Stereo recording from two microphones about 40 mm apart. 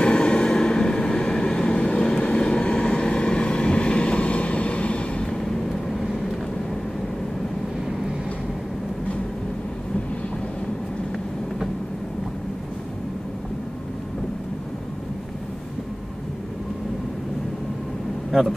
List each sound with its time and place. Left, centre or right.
0.0 s vehicle: left
5.2 s vehicle: centre